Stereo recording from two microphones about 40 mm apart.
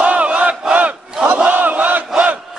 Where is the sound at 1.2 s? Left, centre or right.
Right.